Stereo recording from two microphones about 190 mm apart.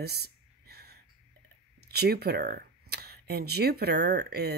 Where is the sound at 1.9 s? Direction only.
55° right (ahead or behind).